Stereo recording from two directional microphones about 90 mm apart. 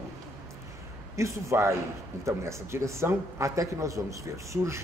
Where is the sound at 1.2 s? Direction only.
35° right (ahead or behind).